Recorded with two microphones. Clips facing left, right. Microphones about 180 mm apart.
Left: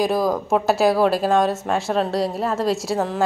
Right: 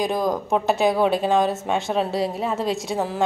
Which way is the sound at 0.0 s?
5° left (ahead or behind).